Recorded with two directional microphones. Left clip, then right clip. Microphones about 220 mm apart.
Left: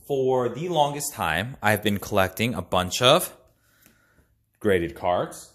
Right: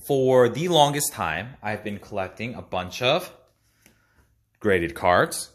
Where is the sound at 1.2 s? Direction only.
Centre (ahead or behind).